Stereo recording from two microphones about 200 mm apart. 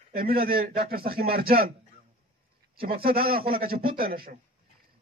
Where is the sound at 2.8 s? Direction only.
50° right (ahead or behind).